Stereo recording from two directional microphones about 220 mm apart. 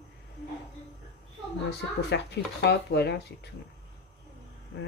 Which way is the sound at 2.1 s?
50° left (ahead or behind).